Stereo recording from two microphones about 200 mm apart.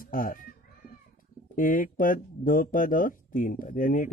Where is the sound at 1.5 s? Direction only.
45° left (ahead or behind).